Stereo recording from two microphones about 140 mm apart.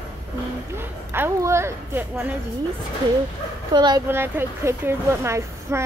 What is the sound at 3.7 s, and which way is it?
Speech, 30° right (ahead or behind).